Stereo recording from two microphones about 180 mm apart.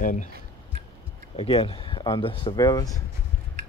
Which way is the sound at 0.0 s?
45° left (ahead or behind).